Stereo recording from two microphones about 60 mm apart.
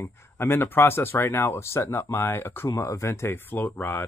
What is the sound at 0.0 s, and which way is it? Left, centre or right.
Speech, left.